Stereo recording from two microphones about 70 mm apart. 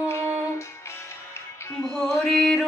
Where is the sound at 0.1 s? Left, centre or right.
Left.